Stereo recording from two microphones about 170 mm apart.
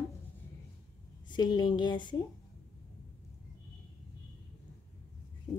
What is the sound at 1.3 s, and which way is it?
Speech, 25° left (ahead or behind).